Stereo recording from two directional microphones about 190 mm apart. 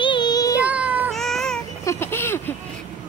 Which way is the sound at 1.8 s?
15° left (ahead or behind).